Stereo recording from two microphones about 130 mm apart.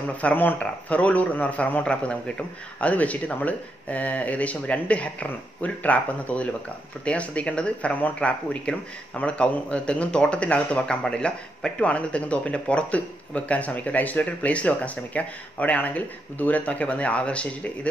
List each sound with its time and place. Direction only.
0.2 s speech: 15° left (ahead or behind)